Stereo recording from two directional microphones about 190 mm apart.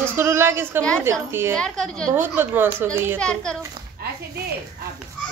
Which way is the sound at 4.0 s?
55° right (ahead or behind).